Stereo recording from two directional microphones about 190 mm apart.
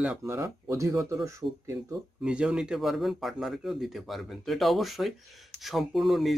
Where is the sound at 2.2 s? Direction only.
5° right (ahead or behind).